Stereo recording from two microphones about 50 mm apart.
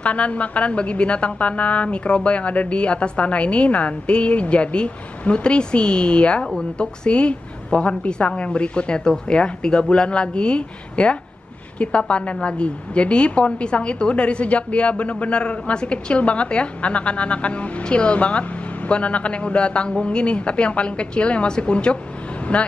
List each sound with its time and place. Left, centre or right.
0.0 s a woman's voice: left